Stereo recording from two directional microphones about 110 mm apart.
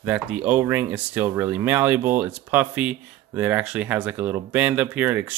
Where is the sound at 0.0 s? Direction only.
10° right (ahead or behind).